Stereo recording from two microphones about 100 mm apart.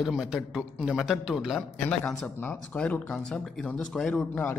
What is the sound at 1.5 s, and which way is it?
Speech, 10° left (ahead or behind).